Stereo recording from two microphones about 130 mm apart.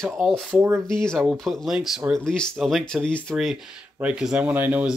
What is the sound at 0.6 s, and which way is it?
Speech, 20° right (ahead or behind).